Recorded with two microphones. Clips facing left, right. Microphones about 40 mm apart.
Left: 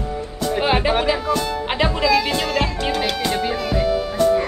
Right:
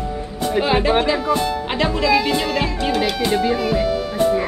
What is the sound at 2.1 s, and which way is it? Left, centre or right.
Speech, centre.